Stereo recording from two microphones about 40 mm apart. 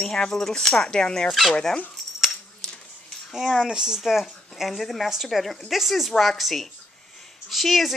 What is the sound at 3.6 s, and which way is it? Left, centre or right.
Speech, centre.